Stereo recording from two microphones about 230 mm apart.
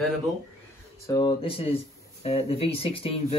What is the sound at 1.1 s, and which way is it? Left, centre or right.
Speech, centre.